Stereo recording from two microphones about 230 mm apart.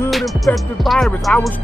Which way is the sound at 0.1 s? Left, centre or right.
Centre.